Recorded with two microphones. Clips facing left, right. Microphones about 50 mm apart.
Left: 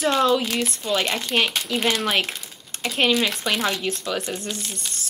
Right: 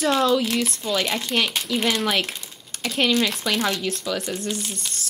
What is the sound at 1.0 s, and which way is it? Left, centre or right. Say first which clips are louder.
Speech: even; centre.